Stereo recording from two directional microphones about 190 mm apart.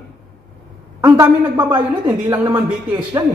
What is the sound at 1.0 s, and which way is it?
Speech, 20° right (ahead or behind).